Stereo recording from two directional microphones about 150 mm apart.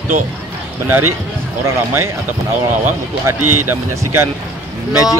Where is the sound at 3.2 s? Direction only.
15° right (ahead or behind).